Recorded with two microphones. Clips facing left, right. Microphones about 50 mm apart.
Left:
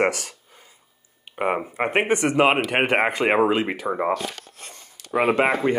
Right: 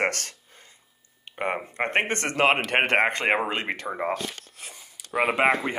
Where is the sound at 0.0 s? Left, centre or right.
Centre.